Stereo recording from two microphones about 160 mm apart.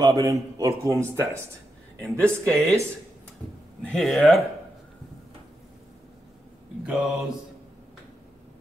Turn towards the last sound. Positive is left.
turn(degrees=-5)  # may be behind; listen again after turning